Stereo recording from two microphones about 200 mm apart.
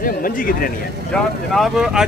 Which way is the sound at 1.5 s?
Centre (ahead or behind).